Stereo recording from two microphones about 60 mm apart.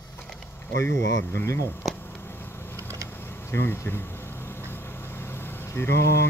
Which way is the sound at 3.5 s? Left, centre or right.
Left.